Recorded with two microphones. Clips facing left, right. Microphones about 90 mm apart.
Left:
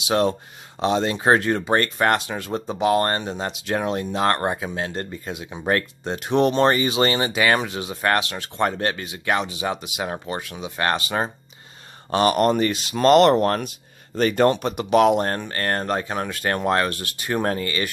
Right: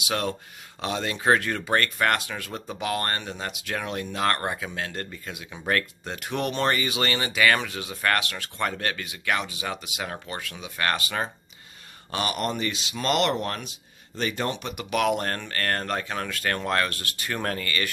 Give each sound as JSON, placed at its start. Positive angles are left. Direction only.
{"t": 0.1, "sound": "speech", "side_deg": 25}
{"t": 12.1, "sound": "speech", "side_deg": 40}